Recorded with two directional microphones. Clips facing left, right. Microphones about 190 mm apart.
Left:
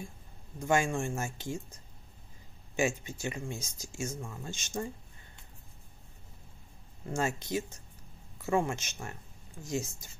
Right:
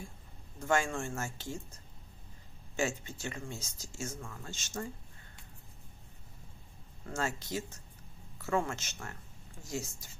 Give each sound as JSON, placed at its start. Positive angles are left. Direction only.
{"t": 0.6, "sound": "speech", "side_deg": 15}
{"t": 2.7, "sound": "speech", "side_deg": 10}
{"t": 7.1, "sound": "speech", "side_deg": 15}